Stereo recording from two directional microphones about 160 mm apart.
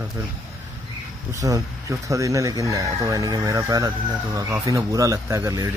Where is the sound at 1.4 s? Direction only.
20° right (ahead or behind).